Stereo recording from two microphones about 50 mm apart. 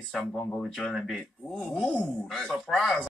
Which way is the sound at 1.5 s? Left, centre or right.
Centre.